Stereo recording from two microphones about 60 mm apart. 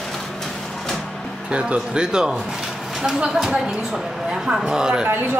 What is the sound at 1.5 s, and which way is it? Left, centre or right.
A woman's voice, centre.